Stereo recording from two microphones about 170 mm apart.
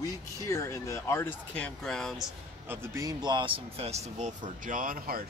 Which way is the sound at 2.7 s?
20° right (ahead or behind).